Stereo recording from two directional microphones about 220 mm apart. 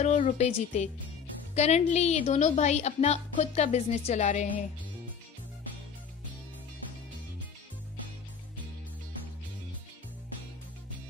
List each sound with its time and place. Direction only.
0.0 s speech: 35° left (ahead or behind)